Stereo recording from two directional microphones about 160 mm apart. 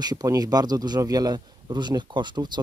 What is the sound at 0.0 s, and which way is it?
Speech, 25° right (ahead or behind).